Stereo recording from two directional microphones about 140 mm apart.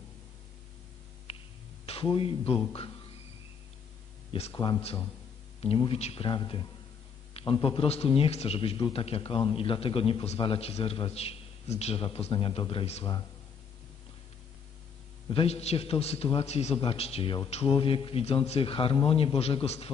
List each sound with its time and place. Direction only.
1.9 s a man's voice: 40° left (ahead or behind)
4.3 s speech: 45° left (ahead or behind)
5.6 s a man's voice: 45° left (ahead or behind)
6.2 s a man's voice: 35° left (ahead or behind)
15.2 s a man's voice: 40° left (ahead or behind)